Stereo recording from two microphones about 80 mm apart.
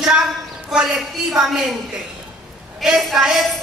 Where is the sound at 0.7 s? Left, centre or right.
Centre.